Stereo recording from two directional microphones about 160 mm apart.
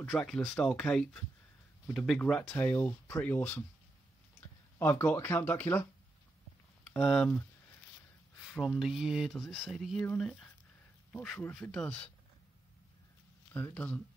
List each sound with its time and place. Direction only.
0.2 s speech: 5° left (ahead or behind)
4.7 s speech: 15° left (ahead or behind)
7.0 s speech: 5° left (ahead or behind)
13.5 s speech: 15° left (ahead or behind)